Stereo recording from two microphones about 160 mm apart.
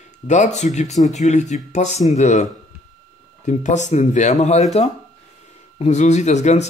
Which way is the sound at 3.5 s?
50° left (ahead or behind).